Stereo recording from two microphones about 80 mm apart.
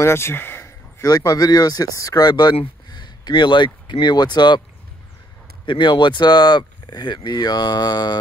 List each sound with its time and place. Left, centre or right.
0.0 s a sound: left
1.0 s speech: left
5.7 s speech: left